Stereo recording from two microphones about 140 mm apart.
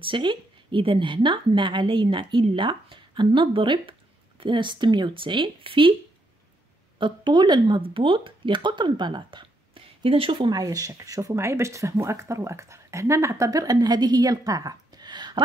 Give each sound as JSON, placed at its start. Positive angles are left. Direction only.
{"t": 0.0, "sound": "a woman's voice", "side_deg": -35}
{"t": 7.0, "sound": "speech", "side_deg": -35}